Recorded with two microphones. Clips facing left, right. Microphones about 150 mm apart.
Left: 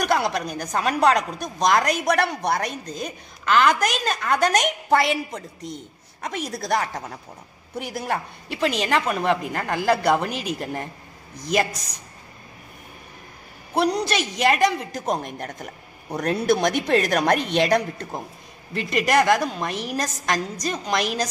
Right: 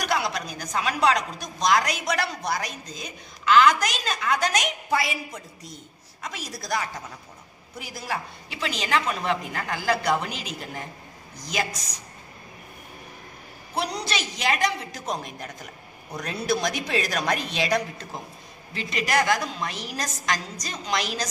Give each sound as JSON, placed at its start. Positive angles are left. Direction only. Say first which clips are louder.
{"t": 0.0, "sound": "speech", "louder": "left 5 dB", "side_deg": 50}
{"t": 13.7, "sound": "a woman's voice", "louder": "left 7 dB", "side_deg": 50}